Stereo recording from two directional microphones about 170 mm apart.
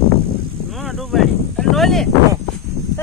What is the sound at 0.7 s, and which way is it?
Speech, centre (ahead or behind).